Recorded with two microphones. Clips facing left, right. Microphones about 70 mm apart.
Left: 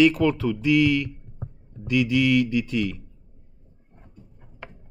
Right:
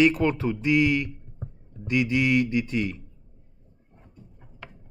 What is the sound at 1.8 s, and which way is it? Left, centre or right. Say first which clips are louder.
Mantra: left 2 dB; right.